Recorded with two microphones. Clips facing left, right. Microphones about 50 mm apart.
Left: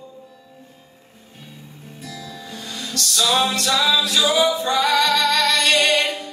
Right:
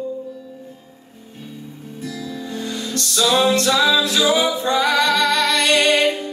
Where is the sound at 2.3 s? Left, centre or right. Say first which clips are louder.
Right 7 dB; right.